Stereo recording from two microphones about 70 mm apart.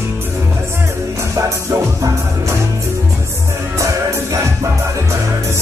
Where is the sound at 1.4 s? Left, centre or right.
Right.